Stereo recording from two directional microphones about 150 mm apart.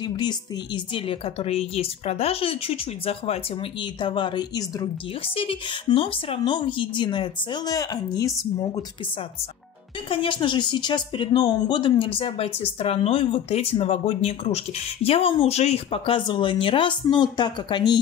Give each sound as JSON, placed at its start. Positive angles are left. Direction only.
{"t": 0.0, "sound": "speech", "side_deg": 30}
{"t": 5.3, "sound": "speech", "side_deg": 35}
{"t": 10.0, "sound": "speech", "side_deg": 35}